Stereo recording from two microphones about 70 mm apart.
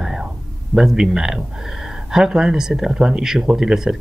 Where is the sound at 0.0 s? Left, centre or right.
Centre.